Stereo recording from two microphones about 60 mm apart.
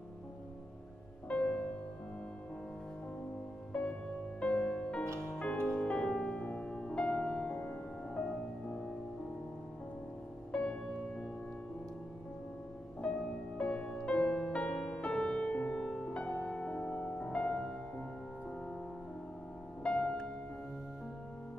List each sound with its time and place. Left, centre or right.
1.3 s music: centre
3.7 s music: centre
10.5 s music: centre
13.0 s music: centre
19.8 s music: centre